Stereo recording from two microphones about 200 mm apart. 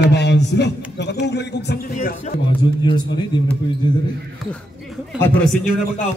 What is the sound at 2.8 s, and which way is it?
Speech, 25° left (ahead or behind).